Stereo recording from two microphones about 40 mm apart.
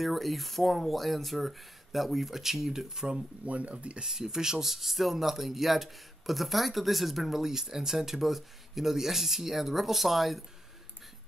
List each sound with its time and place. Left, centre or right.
0.0 s speech: centre
3.4 s speech: right
4.0 s speech: centre